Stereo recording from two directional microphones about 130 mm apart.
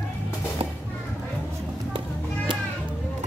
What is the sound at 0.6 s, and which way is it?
Music, 50° right (ahead or behind).